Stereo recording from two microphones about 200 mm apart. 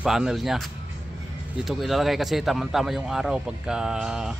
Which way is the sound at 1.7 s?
Centre (ahead or behind).